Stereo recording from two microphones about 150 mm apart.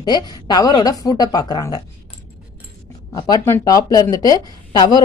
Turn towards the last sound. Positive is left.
turn(degrees=25)  # may be behind; listen again after turning